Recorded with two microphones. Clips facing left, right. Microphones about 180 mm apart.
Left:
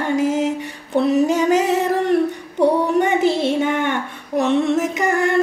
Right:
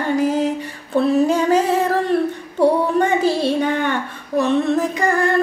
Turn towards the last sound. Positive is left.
turn(degrees=20)  # may be behind; listen again after turning